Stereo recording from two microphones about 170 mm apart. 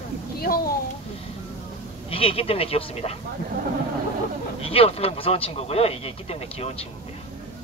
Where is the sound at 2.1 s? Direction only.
35° left (ahead or behind).